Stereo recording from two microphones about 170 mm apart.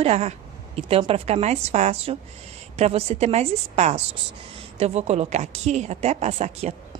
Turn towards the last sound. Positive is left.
turn(degrees=-40)  # may be behind; listen again after turning